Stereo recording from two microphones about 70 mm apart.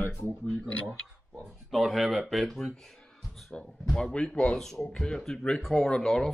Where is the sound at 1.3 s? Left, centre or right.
Centre.